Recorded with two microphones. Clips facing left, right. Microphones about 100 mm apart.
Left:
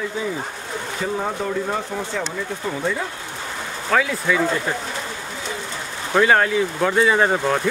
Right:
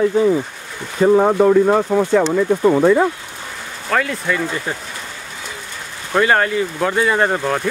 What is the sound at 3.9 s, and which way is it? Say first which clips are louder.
Speech: right 1 dB; centre (ahead or behind).